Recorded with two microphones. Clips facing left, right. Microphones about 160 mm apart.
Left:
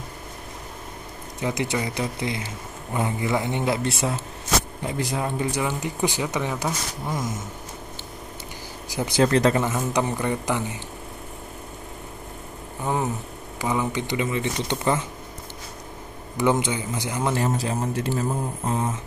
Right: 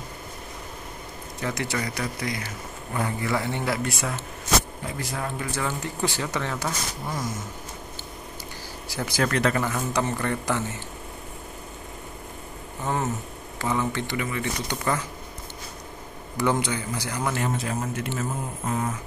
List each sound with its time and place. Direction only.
1.4 s speech: 20° left (ahead or behind)
8.8 s speech: 20° left (ahead or behind)
12.8 s speech: 15° left (ahead or behind)
16.3 s speech: 20° left (ahead or behind)